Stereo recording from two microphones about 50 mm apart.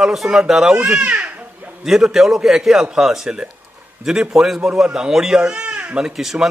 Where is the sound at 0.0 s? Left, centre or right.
Centre.